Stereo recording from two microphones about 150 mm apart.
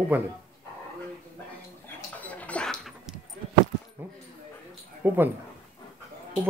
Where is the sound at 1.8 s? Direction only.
10° left (ahead or behind).